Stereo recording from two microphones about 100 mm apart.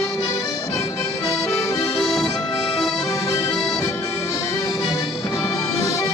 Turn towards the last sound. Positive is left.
turn(degrees=35)  # may be behind; listen again after turning